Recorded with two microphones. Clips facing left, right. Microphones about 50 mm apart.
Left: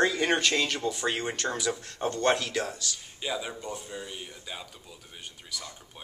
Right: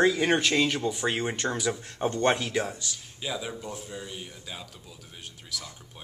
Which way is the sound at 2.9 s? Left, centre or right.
Centre.